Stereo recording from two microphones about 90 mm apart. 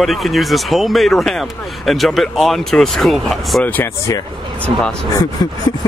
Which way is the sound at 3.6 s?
20° left (ahead or behind).